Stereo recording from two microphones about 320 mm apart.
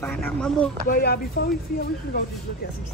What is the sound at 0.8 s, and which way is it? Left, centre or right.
Speech, left.